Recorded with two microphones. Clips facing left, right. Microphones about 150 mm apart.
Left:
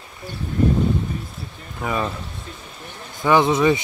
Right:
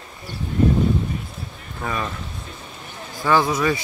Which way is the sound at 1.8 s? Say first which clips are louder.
Left 2 dB; 15° left (ahead or behind).